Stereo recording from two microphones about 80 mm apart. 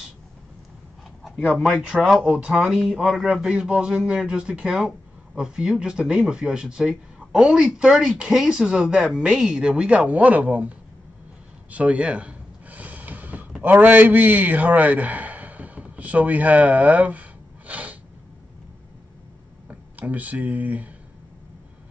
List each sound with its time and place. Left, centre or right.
1.5 s a man's voice: centre
11.7 s gasp: centre
13.6 s a man's voice: right
19.7 s speech: centre